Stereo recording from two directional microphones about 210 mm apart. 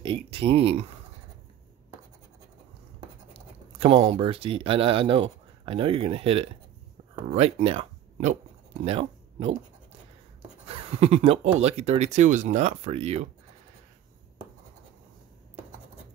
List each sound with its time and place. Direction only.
0.0 s speech: 25° right (ahead or behind)
3.8 s speech: 25° right (ahead or behind)
10.7 s speech: 30° right (ahead or behind)